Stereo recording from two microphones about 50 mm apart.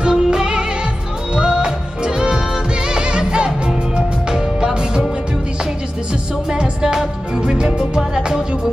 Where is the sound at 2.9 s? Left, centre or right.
Centre.